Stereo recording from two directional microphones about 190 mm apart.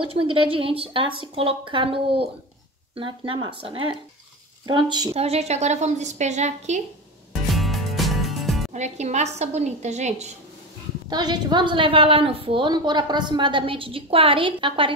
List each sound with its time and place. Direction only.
0.1 s a woman's voice: 30° right (ahead or behind)
7.5 s music: centre (ahead or behind)
8.7 s a woman's voice: 35° right (ahead or behind)
11.1 s a woman's voice: 20° right (ahead or behind)